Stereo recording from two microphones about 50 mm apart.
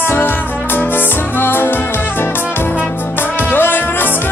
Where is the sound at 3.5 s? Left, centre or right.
Left.